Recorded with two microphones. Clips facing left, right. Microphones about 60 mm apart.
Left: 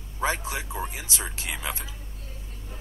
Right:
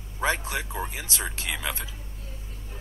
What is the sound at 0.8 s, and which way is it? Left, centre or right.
Speech, right.